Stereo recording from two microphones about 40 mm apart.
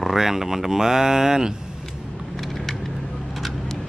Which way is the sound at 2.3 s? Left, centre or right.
Centre.